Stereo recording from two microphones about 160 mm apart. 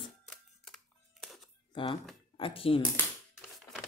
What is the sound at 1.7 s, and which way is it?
Speech, 30° left (ahead or behind).